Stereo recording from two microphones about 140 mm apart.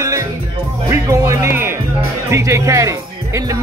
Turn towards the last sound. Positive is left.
turn(degrees=-25)  # may be behind; listen again after turning